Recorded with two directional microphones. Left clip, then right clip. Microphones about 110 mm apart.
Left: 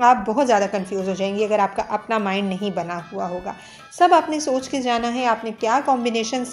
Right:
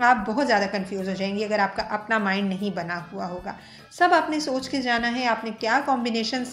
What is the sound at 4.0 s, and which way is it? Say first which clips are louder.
Speech: left 4 dB; 45° left (ahead or behind).